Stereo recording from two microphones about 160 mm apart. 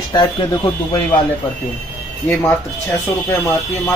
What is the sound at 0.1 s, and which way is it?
Speech, 25° left (ahead or behind).